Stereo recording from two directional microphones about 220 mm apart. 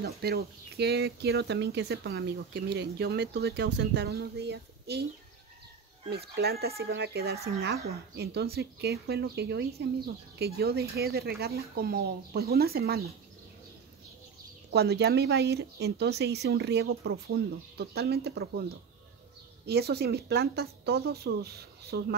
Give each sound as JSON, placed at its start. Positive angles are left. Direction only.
{"t": 0.0, "sound": "speech", "side_deg": -45}
{"t": 6.0, "sound": "speech", "side_deg": -45}
{"t": 14.7, "sound": "speech", "side_deg": -50}